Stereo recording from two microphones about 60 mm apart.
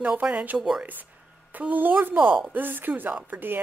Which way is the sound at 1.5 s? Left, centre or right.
Right.